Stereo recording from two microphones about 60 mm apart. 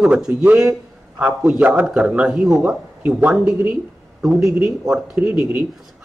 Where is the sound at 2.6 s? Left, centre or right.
Right.